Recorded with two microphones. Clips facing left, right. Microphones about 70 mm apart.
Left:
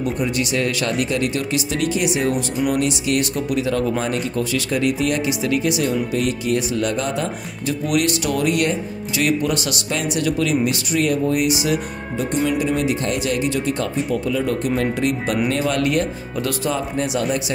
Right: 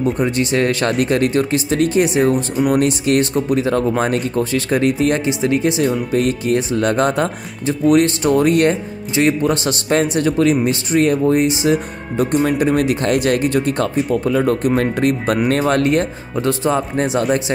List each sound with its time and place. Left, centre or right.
0.0 s speech: right
7.9 s speech: right
12.4 s speech: right